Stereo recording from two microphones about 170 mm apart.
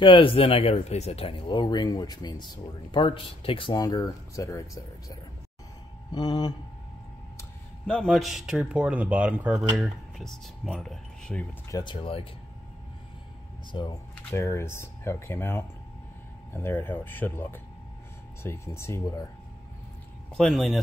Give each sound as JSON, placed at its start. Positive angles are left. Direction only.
{"t": 0.0, "sound": "speech", "side_deg": 30}
{"t": 6.1, "sound": "speech", "side_deg": 25}
{"t": 7.8, "sound": "speech", "side_deg": 5}
{"t": 11.7, "sound": "speech", "side_deg": 25}
{"t": 13.7, "sound": "speech", "side_deg": 25}
{"t": 14.1, "sound": "speech", "side_deg": 15}
{"t": 20.3, "sound": "speech", "side_deg": 0}